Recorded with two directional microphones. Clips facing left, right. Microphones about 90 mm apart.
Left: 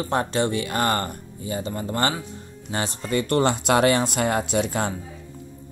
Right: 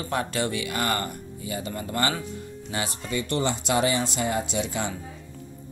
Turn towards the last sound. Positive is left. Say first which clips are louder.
# left 5 dB
turn(degrees=50)  # may be behind; listen again after turning